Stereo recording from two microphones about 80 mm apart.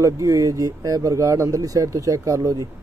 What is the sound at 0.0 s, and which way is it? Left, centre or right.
Speech, right.